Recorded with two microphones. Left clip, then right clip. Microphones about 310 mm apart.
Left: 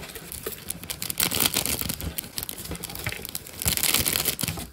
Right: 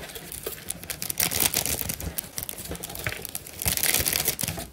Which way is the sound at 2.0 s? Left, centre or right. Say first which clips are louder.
Left 2 dB; left.